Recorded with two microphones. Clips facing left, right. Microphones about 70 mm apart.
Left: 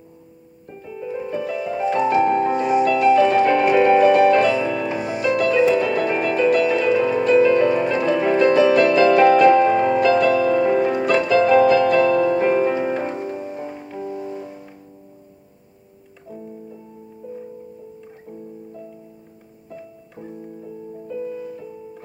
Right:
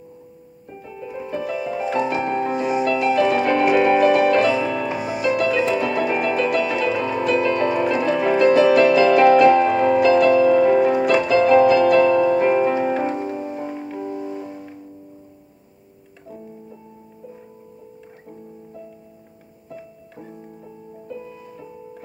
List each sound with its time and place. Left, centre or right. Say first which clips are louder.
0.7 s music: left 4 dB; centre
2.5 s music: left 3 dB; centre
3.2 s music: left 2 dB; centre
5.0 s music: even; centre
5.4 s music: left 6 dB; centre
19.7 s music: even; centre